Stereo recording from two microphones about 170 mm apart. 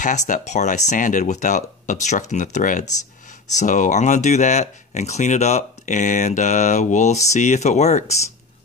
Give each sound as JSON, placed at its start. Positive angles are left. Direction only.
{"t": 0.0, "sound": "speech", "side_deg": 45}